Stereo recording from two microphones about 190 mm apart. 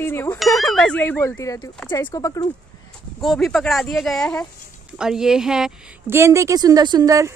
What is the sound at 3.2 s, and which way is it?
A woman's voice, centre (ahead or behind).